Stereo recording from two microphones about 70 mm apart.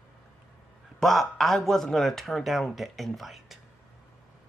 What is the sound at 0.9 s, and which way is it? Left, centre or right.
Speech, centre.